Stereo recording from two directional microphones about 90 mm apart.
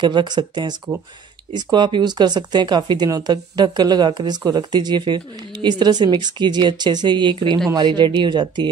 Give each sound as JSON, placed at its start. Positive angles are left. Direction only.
{"t": 0.0, "sound": "speech", "side_deg": -55}